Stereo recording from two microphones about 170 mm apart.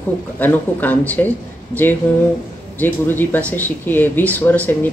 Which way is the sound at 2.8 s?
10° left (ahead or behind).